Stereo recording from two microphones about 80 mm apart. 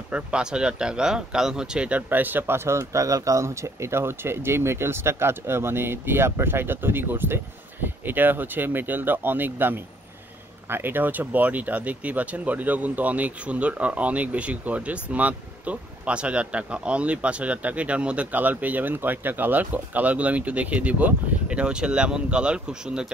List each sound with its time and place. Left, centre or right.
0.1 s speech: centre